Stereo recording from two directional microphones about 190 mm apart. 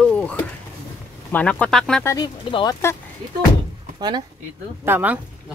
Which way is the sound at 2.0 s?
20° left (ahead or behind).